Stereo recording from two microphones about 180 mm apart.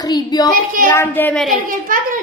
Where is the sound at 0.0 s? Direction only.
20° left (ahead or behind); by 1.6 s centre (ahead or behind).